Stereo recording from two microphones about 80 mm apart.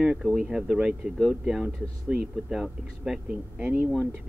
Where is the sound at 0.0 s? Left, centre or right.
Centre.